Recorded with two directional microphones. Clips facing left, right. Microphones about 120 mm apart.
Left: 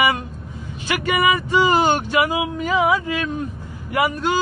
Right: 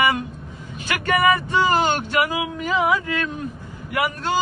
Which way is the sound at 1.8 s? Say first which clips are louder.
Left 3 dB; 15° left (ahead or behind).